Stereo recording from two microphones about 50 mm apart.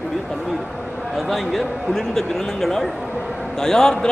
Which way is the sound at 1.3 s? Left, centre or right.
Centre.